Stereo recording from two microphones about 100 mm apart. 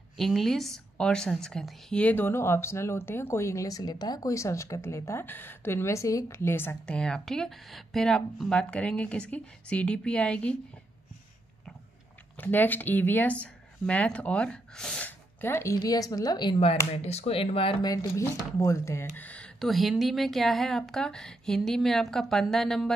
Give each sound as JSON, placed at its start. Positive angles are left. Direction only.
{"t": 0.2, "sound": "a woman's voice", "side_deg": 5}
{"t": 6.9, "sound": "speech", "side_deg": 5}
{"t": 12.4, "sound": "speech", "side_deg": 20}
{"t": 15.0, "sound": "a sound", "side_deg": 25}
{"t": 15.8, "sound": "a woman's voice", "side_deg": 40}
{"t": 16.9, "sound": "speech", "side_deg": 90}
{"t": 17.8, "sound": "a woman's voice", "side_deg": 35}
{"t": 19.1, "sound": "speech", "side_deg": 15}
{"t": 19.6, "sound": "a woman's voice", "side_deg": 0}